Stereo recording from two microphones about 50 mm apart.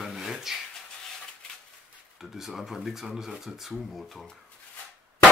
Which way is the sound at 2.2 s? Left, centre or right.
Centre.